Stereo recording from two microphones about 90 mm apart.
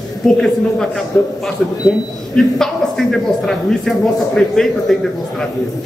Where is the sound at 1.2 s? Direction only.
20° left (ahead or behind).